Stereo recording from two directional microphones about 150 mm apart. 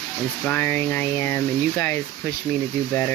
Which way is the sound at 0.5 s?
15° left (ahead or behind).